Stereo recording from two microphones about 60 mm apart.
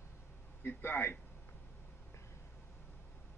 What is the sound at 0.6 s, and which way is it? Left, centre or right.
Speech, left.